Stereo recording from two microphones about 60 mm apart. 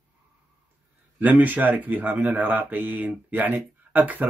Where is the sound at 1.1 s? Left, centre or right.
Right.